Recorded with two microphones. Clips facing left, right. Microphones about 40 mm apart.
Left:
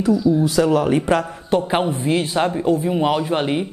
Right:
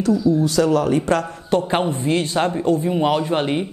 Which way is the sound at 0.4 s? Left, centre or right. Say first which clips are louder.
Left 1 dB; centre.